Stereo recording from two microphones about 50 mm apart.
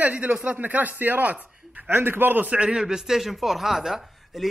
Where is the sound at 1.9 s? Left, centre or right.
Right.